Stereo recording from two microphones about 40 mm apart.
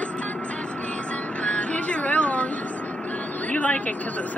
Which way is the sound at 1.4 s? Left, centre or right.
Left.